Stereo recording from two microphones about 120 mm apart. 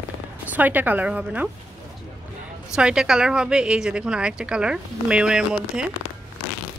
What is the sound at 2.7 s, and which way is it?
A woman's voice, 5° right (ahead or behind).